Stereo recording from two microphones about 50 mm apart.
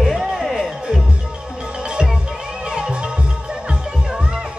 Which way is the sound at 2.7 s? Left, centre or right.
Centre.